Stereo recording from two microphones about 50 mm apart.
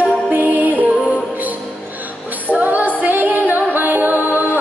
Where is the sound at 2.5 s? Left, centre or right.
Right.